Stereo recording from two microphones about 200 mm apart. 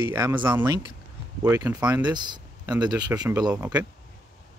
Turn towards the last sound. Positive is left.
turn(degrees=-10)  # may be behind; listen again after turning